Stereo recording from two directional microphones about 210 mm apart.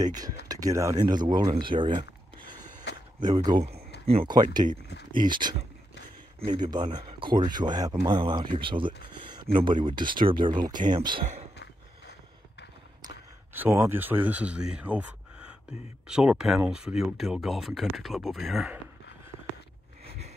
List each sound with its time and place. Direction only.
0.5 s speech: 15° right (ahead or behind)
2.9 s a sound: 55° left (ahead or behind)
3.2 s speech: 20° right (ahead or behind)
3.9 s a sound: 55° left (ahead or behind)
4.6 s speech: 30° right (ahead or behind)
6.7 s speech: 20° right (ahead or behind)
10.5 s speech: 40° right (ahead or behind)
10.8 s speech: 20° right (ahead or behind)
13.0 s speech: 10° right (ahead or behind)